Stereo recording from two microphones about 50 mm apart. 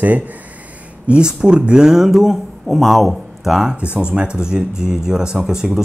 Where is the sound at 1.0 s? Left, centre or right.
Centre.